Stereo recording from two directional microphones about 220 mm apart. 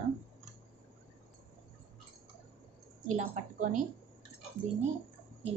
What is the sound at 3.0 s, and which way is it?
Speech, 35° right (ahead or behind).